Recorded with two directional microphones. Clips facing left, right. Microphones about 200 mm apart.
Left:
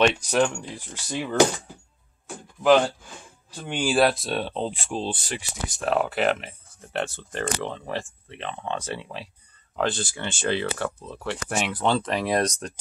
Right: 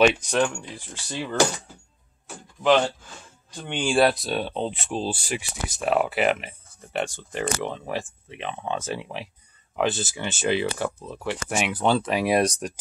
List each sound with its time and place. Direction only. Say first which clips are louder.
0.0 s speech: right 1 dB; centre (ahead or behind)
0.9 s speech: left 3 dB; 15° left (ahead or behind)
2.2 s a sound: left 2 dB; 5° left (ahead or behind)
3.5 s speech: even; 5° left (ahead or behind); by 12.7 s 10° right (ahead or behind)